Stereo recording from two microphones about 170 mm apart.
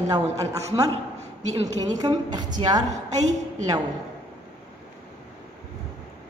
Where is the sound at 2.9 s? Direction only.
40° right (ahead or behind).